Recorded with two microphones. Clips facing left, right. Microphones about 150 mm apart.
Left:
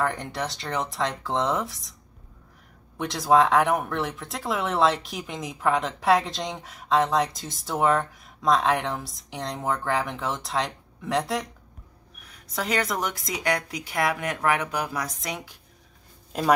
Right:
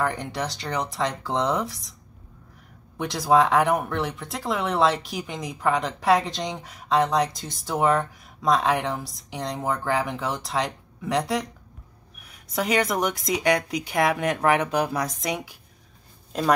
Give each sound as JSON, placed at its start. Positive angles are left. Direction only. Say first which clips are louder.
{"t": 0.0, "sound": "speech", "louder": "right 1 dB", "side_deg": 0}
{"t": 3.0, "sound": "speech", "louder": "even", "side_deg": 0}
{"t": 12.3, "sound": "a woman's voice", "louder": "right 4 dB", "side_deg": -15}
{"t": 16.3, "sound": "speech", "louder": "right 1 dB", "side_deg": 5}